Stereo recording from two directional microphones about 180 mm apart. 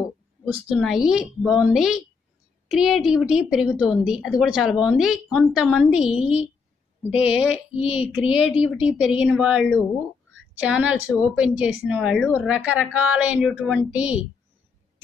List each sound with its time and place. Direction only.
0.7 s speech: centre (ahead or behind)
7.7 s a sound: 30° left (ahead or behind)
8.1 s speech: 5° right (ahead or behind)